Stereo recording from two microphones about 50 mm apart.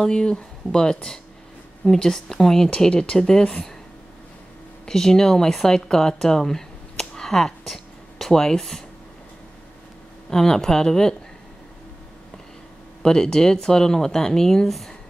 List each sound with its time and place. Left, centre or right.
0.0 s speech: centre
4.8 s speech: centre
10.3 s speech: centre
13.0 s speech: centre